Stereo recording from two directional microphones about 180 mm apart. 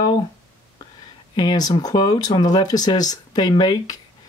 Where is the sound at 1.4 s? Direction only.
20° left (ahead or behind).